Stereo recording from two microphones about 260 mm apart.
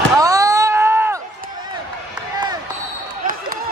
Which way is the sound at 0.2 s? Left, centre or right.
Centre.